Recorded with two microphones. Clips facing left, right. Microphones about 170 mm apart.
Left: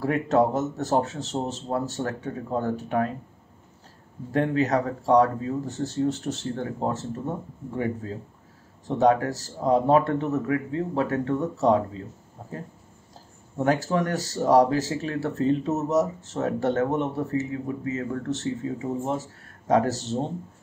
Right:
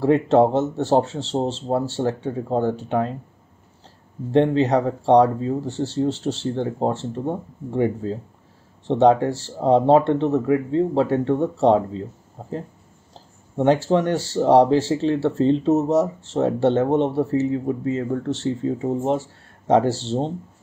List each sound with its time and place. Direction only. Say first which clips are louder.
0.0 s speech: right 6 dB; 30° right (ahead or behind)
4.3 s speech: right 6 dB; 30° right (ahead or behind)
13.6 s speech: right 6 dB; 30° right (ahead or behind)